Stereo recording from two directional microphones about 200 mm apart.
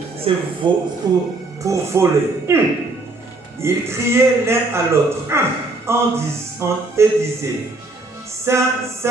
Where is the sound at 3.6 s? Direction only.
15° right (ahead or behind).